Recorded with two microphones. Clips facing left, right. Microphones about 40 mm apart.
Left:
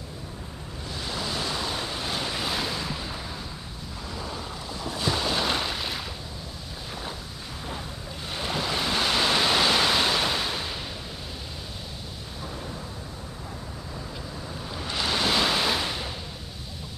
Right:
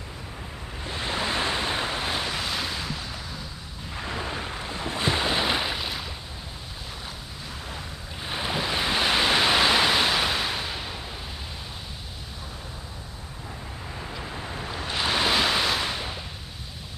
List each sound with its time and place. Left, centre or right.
0.8 s waves: right
2.1 s waves: centre
2.4 s waves: centre
4.0 s boat: right; by 5.9 s centre
5.9 s a sound: centre
8.3 s ocean: centre
14.3 s boat: right
14.9 s waves: centre
15.9 s a sound: centre